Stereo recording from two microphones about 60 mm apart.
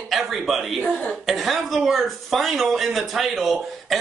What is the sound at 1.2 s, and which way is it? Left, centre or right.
A man's voice, centre.